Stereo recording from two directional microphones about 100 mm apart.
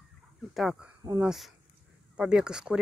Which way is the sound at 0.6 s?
Centre (ahead or behind).